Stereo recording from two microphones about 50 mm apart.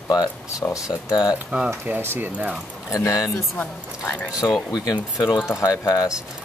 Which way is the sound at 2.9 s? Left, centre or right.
Left.